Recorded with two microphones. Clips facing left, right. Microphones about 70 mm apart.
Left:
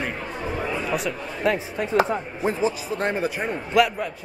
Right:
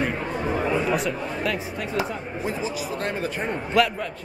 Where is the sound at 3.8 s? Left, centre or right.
Centre.